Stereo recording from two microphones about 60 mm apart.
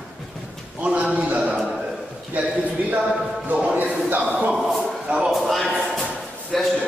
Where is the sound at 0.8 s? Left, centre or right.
Right.